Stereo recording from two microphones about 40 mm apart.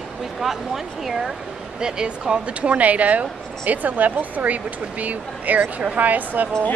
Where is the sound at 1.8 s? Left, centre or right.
Right.